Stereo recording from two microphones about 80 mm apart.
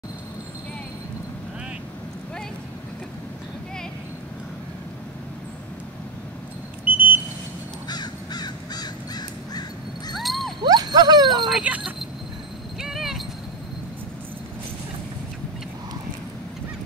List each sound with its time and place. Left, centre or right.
6.8 s beep: right
7.9 s crow: left
10.1 s a sound: centre
10.6 s a sound: right
11.7 s speech: centre
12.8 s clip-clop: centre